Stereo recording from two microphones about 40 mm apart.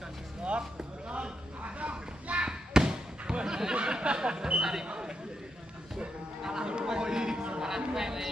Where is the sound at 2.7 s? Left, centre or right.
Centre.